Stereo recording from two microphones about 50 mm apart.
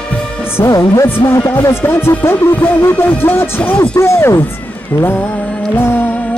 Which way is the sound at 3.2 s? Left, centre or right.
Left.